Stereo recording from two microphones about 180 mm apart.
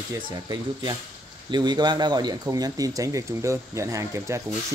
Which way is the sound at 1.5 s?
25° right (ahead or behind).